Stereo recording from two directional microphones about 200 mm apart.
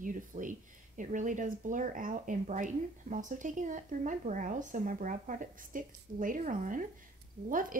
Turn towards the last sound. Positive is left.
turn(degrees=-45)  # may be behind; listen again after turning